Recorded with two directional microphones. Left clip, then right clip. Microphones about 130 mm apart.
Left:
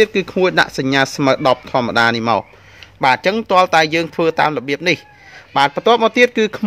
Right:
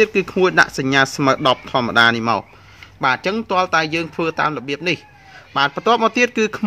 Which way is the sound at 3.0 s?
35° left (ahead or behind).